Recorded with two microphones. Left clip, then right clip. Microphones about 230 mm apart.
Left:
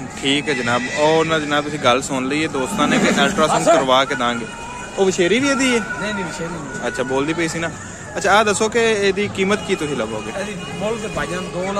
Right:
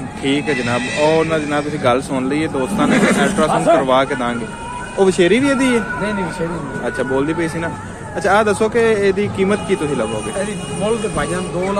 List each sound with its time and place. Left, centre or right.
0.2 s speech: centre
4.9 s speech: centre
7.0 s speech: centre